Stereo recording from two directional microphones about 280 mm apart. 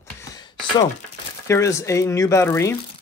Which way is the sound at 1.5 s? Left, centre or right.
Centre.